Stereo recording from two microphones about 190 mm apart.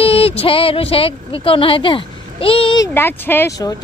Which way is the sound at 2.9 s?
10° left (ahead or behind).